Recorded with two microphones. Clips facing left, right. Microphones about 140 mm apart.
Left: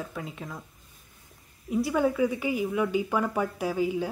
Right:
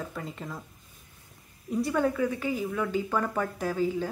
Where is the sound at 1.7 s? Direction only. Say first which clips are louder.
Left 1 dB; 5° left (ahead or behind).